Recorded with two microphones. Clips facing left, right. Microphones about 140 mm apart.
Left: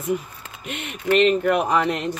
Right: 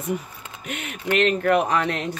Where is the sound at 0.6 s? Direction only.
Centre (ahead or behind).